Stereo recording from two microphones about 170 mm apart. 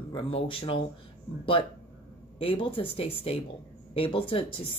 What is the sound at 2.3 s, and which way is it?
Speech, 30° left (ahead or behind).